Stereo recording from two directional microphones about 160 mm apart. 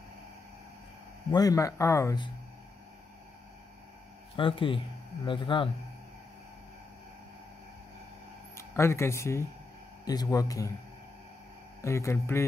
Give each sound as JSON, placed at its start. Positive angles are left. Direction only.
{"t": 1.3, "sound": "speech", "side_deg": 20}
{"t": 4.4, "sound": "speech", "side_deg": 30}
{"t": 8.5, "sound": "speech", "side_deg": 15}
{"t": 11.8, "sound": "speech", "side_deg": 15}